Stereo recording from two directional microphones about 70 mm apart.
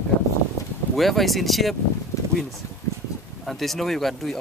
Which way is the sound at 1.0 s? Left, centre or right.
Centre.